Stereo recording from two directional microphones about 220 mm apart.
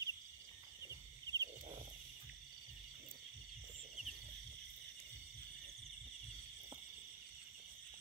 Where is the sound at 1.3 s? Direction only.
15° right (ahead or behind).